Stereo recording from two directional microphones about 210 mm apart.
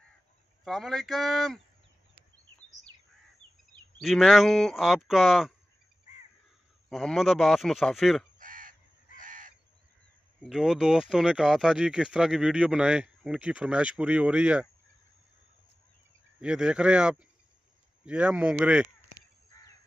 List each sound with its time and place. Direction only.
0.7 s speech: centre (ahead or behind)
4.0 s speech: centre (ahead or behind)
6.9 s speech: centre (ahead or behind)
8.4 s crow: 40° right (ahead or behind)
10.4 s speech: centre (ahead or behind)
16.3 s speech: 5° right (ahead or behind)